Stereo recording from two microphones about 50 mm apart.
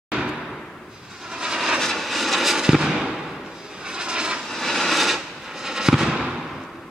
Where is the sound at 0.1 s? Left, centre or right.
Centre.